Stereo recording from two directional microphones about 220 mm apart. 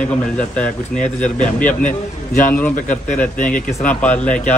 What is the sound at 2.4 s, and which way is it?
Speech, 10° left (ahead or behind).